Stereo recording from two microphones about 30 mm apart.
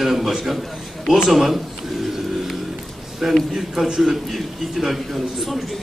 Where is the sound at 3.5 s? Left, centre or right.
Centre.